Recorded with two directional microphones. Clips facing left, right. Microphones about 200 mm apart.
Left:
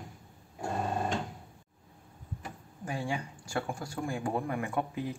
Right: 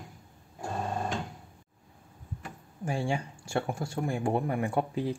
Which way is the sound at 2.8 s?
30° right (ahead or behind).